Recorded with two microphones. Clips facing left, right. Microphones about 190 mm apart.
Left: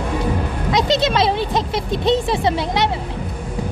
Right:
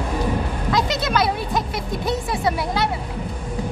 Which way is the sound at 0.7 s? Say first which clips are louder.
Left 4 dB; 25° left (ahead or behind).